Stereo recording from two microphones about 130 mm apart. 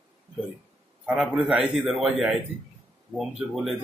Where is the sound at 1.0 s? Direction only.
5° right (ahead or behind).